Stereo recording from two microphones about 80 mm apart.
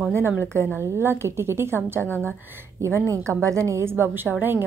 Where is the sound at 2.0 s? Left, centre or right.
Left.